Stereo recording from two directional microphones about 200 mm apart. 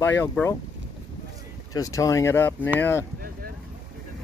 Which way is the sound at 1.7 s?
15° left (ahead or behind).